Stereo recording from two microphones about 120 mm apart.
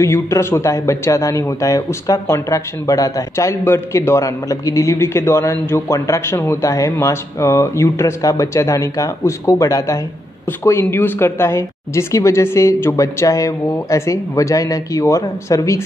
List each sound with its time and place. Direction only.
0.0 s a man's voice: 20° left (ahead or behind)